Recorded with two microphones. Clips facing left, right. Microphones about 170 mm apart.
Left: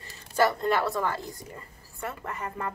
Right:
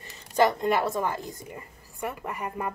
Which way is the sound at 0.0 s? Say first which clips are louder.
Right 2 dB; 15° right (ahead or behind).